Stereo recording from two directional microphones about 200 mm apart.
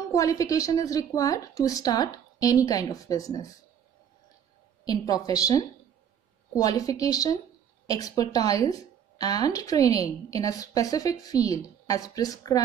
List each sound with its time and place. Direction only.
0.1 s a woman's voice: 15° left (ahead or behind)
4.8 s a woman's voice: 20° left (ahead or behind)